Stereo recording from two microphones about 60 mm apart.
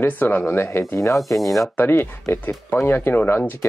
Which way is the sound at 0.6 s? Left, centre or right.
Left.